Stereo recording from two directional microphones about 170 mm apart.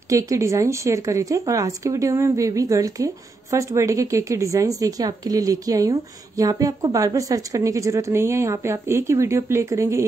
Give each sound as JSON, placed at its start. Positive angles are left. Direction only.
{"t": 0.1, "sound": "a woman's voice", "side_deg": -20}